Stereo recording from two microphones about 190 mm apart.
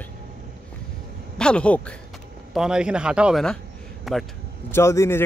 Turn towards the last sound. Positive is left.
turn(degrees=15)  # may be behind; listen again after turning